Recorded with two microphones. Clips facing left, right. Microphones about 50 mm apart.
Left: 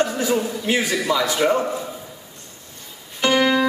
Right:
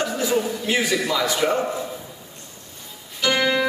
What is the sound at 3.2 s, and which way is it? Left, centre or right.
Music, left.